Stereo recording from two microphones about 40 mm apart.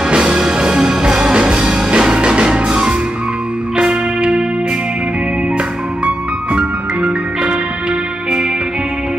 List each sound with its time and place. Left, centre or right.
0.1 s music: centre
6.0 s music: right